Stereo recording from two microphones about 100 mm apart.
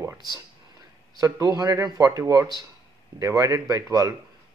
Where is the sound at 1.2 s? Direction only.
35° right (ahead or behind).